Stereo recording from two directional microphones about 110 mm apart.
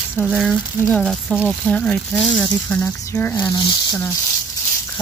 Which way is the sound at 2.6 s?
25° left (ahead or behind).